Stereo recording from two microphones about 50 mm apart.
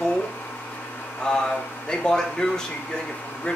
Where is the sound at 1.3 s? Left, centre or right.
Centre.